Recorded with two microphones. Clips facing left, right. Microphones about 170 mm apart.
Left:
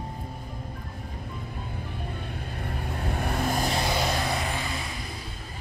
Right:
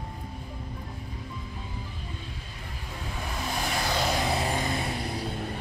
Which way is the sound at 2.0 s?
60° left (ahead or behind).